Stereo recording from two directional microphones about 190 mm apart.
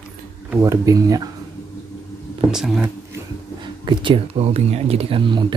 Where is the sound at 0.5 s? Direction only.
15° right (ahead or behind).